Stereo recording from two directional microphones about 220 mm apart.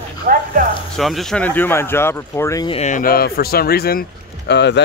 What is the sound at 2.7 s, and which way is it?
Speech, 35° left (ahead or behind).